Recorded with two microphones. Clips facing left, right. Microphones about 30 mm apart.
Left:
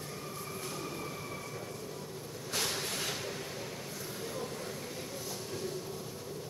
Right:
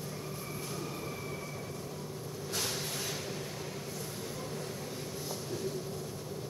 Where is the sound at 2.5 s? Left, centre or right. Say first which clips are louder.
Left 2 dB; left.